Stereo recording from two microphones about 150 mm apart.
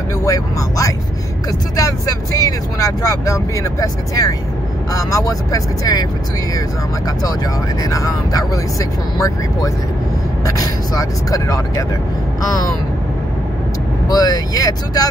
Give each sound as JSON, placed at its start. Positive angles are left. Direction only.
{"t": 0.2, "sound": "speech", "side_deg": 20}
{"t": 7.8, "sound": "speech", "side_deg": 25}
{"t": 14.0, "sound": "speech", "side_deg": 25}